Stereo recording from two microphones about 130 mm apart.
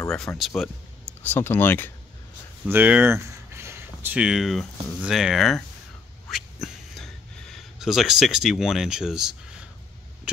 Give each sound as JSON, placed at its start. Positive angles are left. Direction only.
{"t": 0.4, "sound": "speech", "side_deg": 0}
{"t": 1.2, "sound": "speech", "side_deg": 15}
{"t": 2.7, "sound": "speech", "side_deg": -10}
{"t": 6.3, "sound": "a sound", "side_deg": 0}